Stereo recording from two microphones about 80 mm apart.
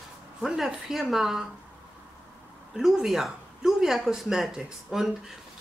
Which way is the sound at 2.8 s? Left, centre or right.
Centre.